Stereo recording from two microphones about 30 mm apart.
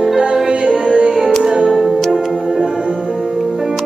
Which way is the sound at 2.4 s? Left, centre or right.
Centre.